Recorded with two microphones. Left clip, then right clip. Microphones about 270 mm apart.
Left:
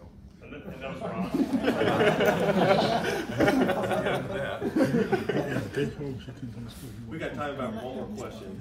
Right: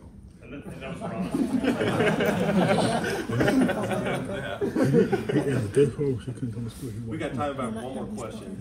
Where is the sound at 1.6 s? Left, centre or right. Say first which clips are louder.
Left 1 dB; left.